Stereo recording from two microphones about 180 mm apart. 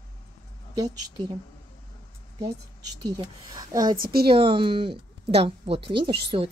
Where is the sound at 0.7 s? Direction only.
20° right (ahead or behind).